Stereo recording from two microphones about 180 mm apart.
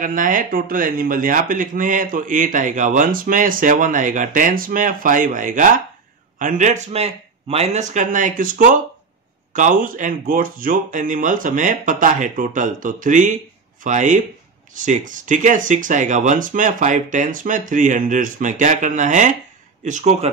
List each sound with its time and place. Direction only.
0.0 s speech: 45° right (ahead or behind)